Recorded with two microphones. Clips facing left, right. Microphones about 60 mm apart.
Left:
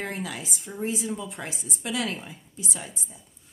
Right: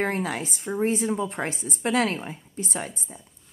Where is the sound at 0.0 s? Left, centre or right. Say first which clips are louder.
Right 7 dB; right.